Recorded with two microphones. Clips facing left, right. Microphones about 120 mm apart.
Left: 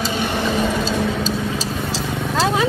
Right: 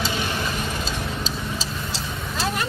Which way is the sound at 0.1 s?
60° left (ahead or behind).